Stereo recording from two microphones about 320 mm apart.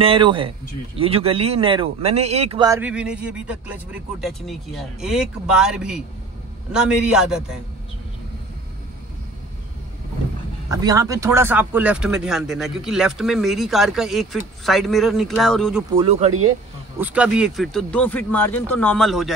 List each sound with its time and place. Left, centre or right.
0.0 s a man's voice: centre
10.7 s a man's voice: centre
15.9 s speech: centre
17.0 s a man's voice: centre